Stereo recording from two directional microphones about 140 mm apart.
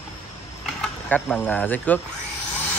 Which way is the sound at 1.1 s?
10° left (ahead or behind).